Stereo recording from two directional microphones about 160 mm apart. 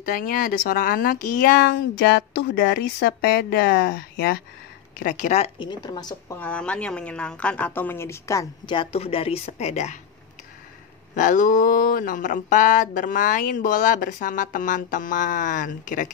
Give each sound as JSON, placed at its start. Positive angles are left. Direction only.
{"t": 0.0, "sound": "speech", "side_deg": 60}
{"t": 4.9, "sound": "speech", "side_deg": 55}
{"t": 5.6, "sound": "speech", "side_deg": 25}
{"t": 6.4, "sound": "a woman's voice", "side_deg": 5}
{"t": 11.1, "sound": "speech", "side_deg": 55}